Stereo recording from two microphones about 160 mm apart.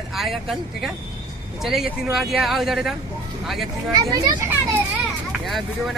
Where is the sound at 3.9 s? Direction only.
20° right (ahead or behind).